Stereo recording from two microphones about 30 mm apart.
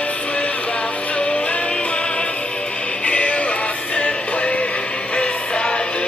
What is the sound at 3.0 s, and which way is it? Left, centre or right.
Music, left.